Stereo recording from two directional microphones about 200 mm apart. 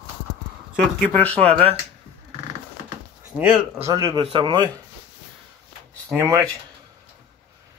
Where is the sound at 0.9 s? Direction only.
10° left (ahead or behind).